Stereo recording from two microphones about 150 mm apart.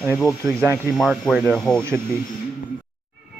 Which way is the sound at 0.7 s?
5° right (ahead or behind).